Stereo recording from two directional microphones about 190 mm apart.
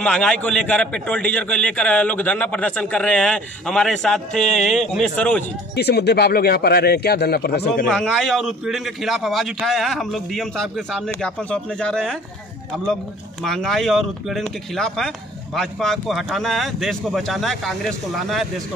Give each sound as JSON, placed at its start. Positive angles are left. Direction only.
{"t": 0.0, "sound": "a man's voice", "side_deg": 5}
{"t": 5.8, "sound": "a man's voice", "side_deg": 60}
{"t": 7.9, "sound": "a man's voice", "side_deg": 5}
{"t": 13.4, "sound": "a man's voice", "side_deg": 0}